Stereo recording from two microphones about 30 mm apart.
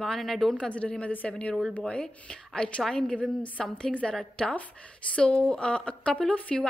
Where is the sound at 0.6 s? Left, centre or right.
Left.